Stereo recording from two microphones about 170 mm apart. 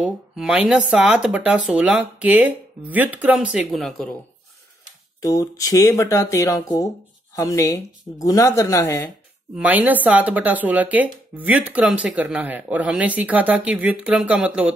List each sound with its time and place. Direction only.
0.0 s speech: 5° right (ahead or behind)
5.2 s speech: 20° left (ahead or behind)
9.6 s speech: 10° right (ahead or behind)